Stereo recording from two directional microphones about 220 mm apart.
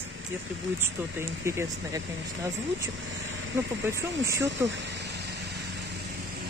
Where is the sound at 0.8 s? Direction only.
10° right (ahead or behind).